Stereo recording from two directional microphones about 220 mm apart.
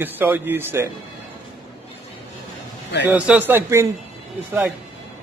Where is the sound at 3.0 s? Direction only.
5° right (ahead or behind).